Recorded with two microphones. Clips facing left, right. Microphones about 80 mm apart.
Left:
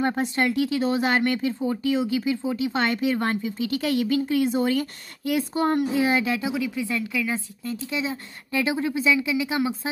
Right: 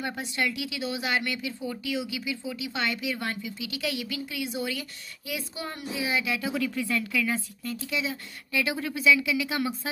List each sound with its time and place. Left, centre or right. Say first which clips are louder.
0.0 s speech: left 7 dB; left
6.4 s speech: left 2 dB; centre